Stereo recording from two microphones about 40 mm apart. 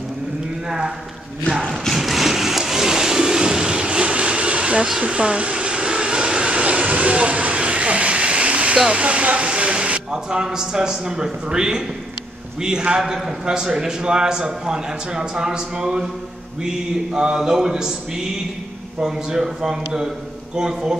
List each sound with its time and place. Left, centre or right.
0.7 s a man's voice: centre
2.0 s vehicle: centre; by 8.7 s right
8.7 s speech: right
9.0 s speech: right
9.5 s vehicle: right
10.1 s a man's voice: centre
13.0 s a man's voice: centre
18.9 s a man's voice: centre